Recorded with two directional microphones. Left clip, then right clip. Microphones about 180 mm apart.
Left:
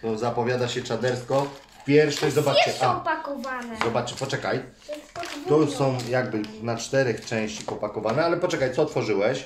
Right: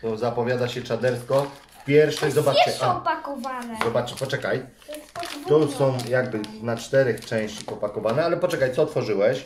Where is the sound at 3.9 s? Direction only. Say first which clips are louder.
Right 2 dB; centre (ahead or behind).